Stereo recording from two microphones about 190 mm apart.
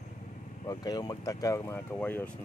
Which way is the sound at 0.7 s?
20° left (ahead or behind).